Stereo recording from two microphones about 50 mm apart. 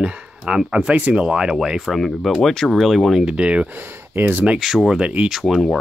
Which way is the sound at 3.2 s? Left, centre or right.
Right.